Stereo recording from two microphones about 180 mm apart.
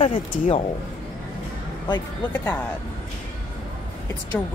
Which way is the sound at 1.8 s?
25° left (ahead or behind).